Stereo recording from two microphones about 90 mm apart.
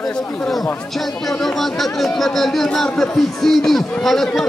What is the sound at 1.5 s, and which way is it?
Speech, centre (ahead or behind).